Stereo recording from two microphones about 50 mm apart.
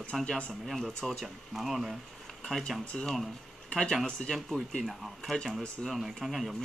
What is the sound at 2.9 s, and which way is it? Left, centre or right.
Speech, centre.